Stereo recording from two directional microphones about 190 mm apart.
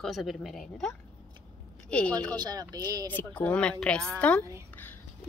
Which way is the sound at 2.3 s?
20° right (ahead or behind).